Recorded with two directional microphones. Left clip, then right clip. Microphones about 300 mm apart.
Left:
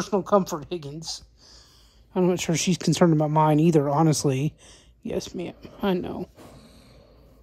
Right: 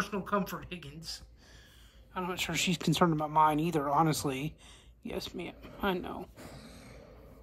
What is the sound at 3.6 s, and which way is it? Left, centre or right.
Speech, left.